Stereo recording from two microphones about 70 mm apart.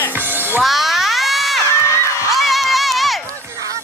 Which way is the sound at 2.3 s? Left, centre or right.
Centre.